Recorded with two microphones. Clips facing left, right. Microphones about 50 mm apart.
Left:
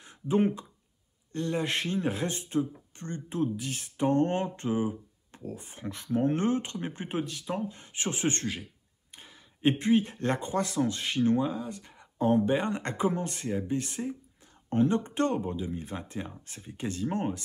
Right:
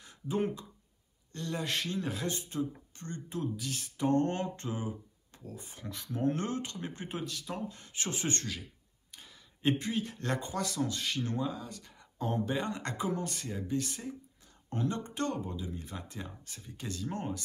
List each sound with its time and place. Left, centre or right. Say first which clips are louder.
0.0 s speech: left 7 dB; left